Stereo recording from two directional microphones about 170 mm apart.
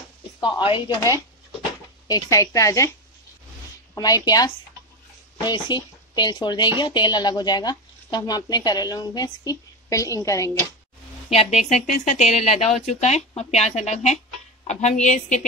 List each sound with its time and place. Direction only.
0.7 s speech: 25° left (ahead or behind)
3.9 s speech: 20° left (ahead or behind)
11.3 s a woman's voice: 40° left (ahead or behind)